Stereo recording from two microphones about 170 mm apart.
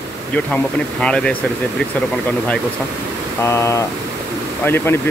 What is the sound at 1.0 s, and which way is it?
Speech, 5° left (ahead or behind).